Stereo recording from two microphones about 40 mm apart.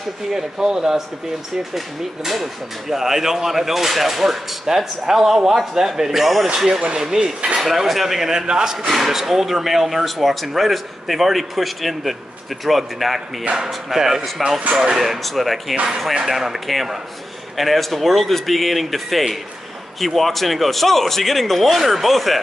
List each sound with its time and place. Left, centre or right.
0.3 s speech: centre
1.6 s speech: centre
8.3 s speech: centre
8.7 s speech: centre
15.0 s speech: centre
15.7 s speech: right
16.3 s speech: centre